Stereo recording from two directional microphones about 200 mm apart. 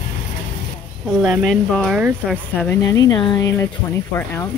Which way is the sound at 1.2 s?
Centre (ahead or behind).